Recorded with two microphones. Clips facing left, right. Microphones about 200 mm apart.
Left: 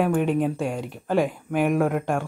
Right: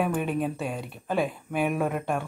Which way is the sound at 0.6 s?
15° left (ahead or behind).